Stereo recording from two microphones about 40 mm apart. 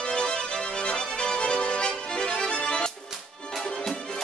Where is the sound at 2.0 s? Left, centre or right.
Left.